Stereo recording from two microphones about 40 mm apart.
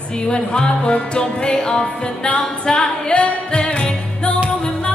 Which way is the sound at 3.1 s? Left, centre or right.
Left.